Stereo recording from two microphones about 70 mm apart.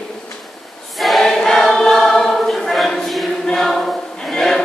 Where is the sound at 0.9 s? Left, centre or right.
Centre.